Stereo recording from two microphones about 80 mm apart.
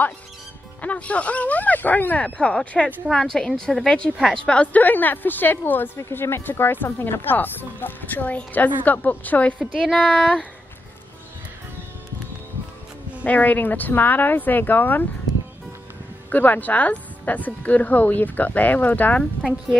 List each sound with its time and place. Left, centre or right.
0.7 s a woman's voice: centre
4.6 s speech: left
5.9 s speech: left; by 10.4 s centre
13.2 s speech: left
16.3 s speech: left